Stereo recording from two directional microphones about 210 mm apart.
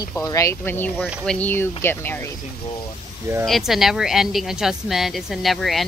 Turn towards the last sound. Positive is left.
turn(degrees=0)  # may be behind; listen again after turning